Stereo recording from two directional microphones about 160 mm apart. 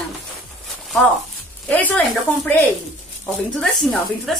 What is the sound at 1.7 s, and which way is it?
Speech, 10° left (ahead or behind).